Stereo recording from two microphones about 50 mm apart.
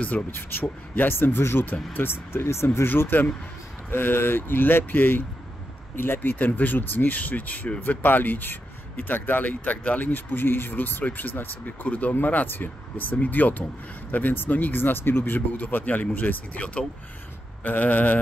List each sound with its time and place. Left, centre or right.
0.3 s speech: left
2.9 s speech: left
17.6 s speech: left